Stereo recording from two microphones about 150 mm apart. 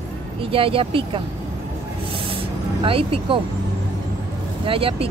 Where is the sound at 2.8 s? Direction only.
35° right (ahead or behind).